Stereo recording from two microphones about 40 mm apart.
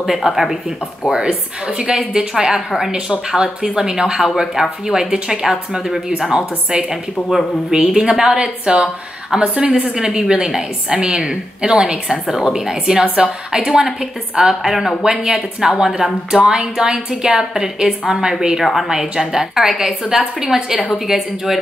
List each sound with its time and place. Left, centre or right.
0.0 s a woman's voice: centre
1.1 s a woman's voice: right
8.3 s a woman's voice: right
18.6 s a woman's voice: centre
18.9 s a woman's voice: centre